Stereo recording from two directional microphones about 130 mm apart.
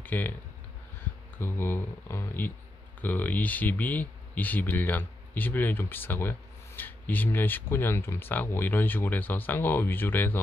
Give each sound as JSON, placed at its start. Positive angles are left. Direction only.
{"t": 0.0, "sound": "speech", "side_deg": 15}
{"t": 1.4, "sound": "speech", "side_deg": 15}